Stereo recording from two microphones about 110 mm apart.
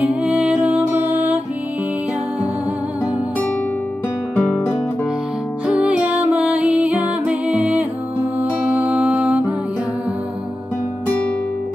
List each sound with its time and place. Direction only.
0.0 s music: 10° right (ahead or behind)
4.4 s music: 15° left (ahead or behind)
5.7 s music: 10° right (ahead or behind)